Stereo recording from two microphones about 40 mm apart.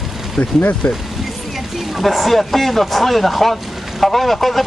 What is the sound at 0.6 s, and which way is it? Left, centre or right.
Speech, left.